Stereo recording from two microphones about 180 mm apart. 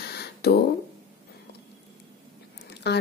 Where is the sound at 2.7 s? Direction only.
65° left (ahead or behind).